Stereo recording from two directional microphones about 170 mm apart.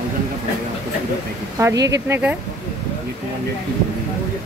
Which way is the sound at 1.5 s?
20° right (ahead or behind).